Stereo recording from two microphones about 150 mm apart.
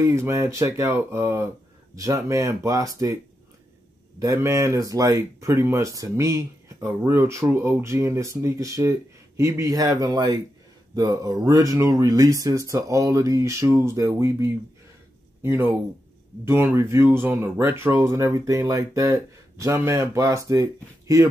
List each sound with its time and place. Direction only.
0.0 s speech: 20° right (ahead or behind)
4.2 s speech: 20° right (ahead or behind)